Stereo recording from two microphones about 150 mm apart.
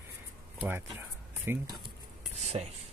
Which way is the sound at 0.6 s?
15° right (ahead or behind).